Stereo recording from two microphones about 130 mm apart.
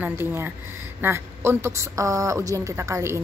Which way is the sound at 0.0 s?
15° right (ahead or behind).